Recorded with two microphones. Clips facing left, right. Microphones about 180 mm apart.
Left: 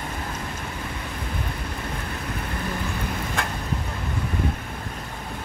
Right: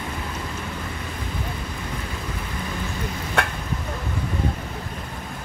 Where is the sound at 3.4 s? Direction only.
65° right (ahead or behind).